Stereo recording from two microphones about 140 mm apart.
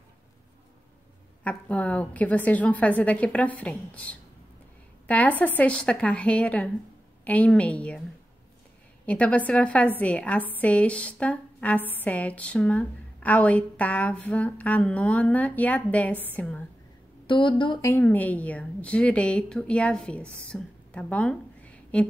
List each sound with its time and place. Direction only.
1.4 s a woman's voice: 10° left (ahead or behind)
9.0 s a woman's voice: 10° left (ahead or behind)
17.3 s a woman's voice: 35° left (ahead or behind)
17.8 s a woman's voice: 15° left (ahead or behind)